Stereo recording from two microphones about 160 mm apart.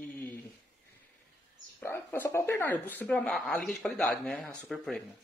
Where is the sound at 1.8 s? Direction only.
10° left (ahead or behind).